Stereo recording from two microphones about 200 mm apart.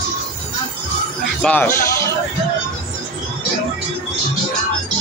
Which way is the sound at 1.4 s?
10° left (ahead or behind).